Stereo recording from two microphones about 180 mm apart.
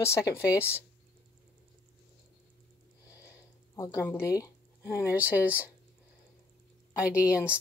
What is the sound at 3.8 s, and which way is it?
Speech, 15° left (ahead or behind).